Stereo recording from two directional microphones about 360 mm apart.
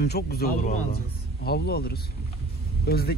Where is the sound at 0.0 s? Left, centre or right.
Left.